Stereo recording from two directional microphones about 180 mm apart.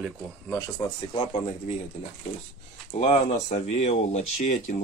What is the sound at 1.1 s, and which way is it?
Speech, 40° left (ahead or behind).